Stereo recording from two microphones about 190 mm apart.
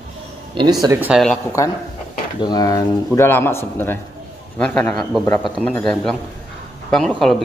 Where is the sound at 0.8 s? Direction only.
15° right (ahead or behind).